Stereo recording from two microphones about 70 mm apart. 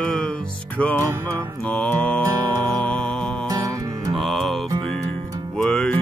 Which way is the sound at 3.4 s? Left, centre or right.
Right.